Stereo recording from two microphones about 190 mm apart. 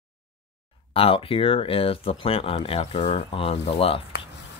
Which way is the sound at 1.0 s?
30° left (ahead or behind).